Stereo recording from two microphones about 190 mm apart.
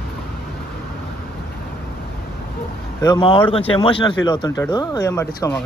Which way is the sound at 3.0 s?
20° left (ahead or behind).